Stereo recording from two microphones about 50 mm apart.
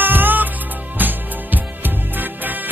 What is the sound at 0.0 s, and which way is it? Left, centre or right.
Music, right.